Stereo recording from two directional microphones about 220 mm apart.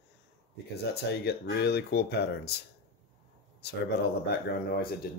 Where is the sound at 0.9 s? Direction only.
50° left (ahead or behind).